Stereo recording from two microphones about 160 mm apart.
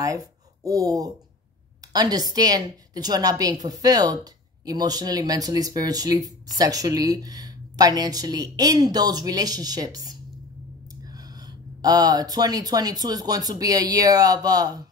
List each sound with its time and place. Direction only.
0.7 s a woman's voice: 20° right (ahead or behind)
11.8 s a woman's voice: 25° right (ahead or behind)